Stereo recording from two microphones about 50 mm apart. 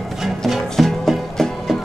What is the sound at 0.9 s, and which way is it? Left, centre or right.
Music, centre.